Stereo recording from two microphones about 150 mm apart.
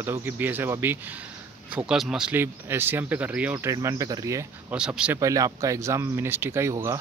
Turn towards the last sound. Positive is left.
turn(degrees=-20)  # may be behind; listen again after turning